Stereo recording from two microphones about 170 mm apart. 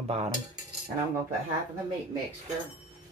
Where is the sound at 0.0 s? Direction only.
40° right (ahead or behind).